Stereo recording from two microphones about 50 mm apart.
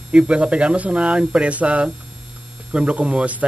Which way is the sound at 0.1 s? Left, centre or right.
Centre.